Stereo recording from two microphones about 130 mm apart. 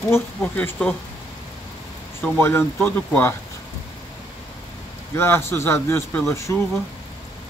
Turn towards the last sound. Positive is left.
turn(degrees=20)  # may be behind; listen again after turning